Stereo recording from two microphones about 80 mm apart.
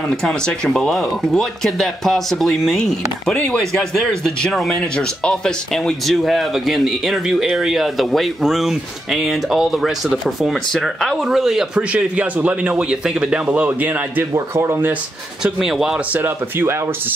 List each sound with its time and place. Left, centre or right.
0.1 s speech: centre
11.9 s a man's voice: centre
14.3 s speech: right
15.4 s a man's voice: centre
16.1 s a man's voice: right